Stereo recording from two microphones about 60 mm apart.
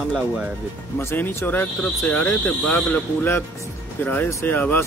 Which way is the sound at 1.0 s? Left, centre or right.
Left.